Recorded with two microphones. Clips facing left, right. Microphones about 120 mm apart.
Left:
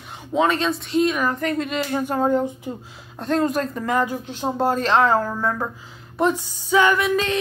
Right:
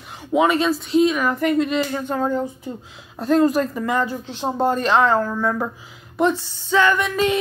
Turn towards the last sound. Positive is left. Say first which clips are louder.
# left 1 dB
turn(degrees=10)  # may be behind; listen again after turning